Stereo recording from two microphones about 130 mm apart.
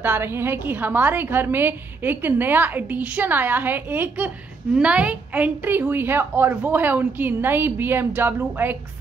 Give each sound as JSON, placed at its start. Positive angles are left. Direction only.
{"t": 0.0, "sound": "a woman's voice", "side_deg": -15}